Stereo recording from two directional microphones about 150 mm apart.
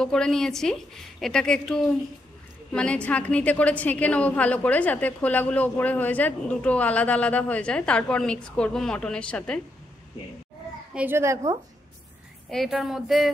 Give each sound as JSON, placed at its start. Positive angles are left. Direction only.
{"t": 0.0, "sound": "a woman's voice", "side_deg": 5}
{"t": 10.9, "sound": "a woman's voice", "side_deg": -10}
{"t": 12.4, "sound": "a woman's voice", "side_deg": 0}